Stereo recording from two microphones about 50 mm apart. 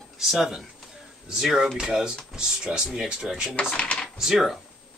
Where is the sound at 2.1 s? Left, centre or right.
Centre.